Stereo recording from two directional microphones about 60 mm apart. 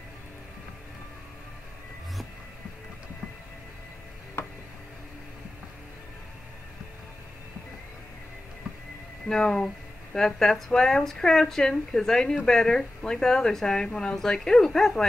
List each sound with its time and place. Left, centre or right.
4.4 s music: left
9.3 s a woman's voice: centre